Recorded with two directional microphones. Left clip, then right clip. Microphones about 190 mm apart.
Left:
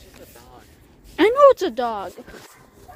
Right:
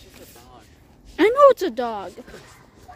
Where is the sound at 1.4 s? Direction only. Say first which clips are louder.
Left 1 dB; 25° right (ahead or behind).